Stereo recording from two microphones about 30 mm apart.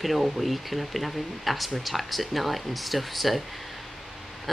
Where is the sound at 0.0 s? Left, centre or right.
Centre.